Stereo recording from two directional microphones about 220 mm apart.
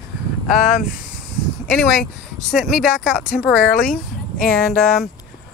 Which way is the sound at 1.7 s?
5° left (ahead or behind).